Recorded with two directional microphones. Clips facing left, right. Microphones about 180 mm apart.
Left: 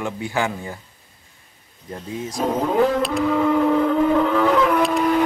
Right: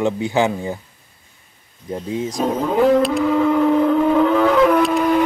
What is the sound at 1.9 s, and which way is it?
Speech, 20° right (ahead or behind).